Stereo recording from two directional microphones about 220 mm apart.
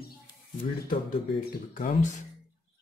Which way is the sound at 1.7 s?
35° left (ahead or behind).